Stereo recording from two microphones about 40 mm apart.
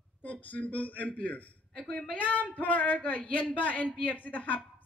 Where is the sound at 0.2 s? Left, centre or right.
Left.